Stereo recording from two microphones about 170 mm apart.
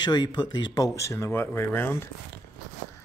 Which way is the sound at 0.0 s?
25° left (ahead or behind).